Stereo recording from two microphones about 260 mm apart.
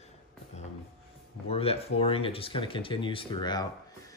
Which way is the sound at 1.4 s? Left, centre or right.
Left.